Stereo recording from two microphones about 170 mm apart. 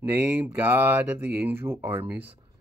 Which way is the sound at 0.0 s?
10° right (ahead or behind).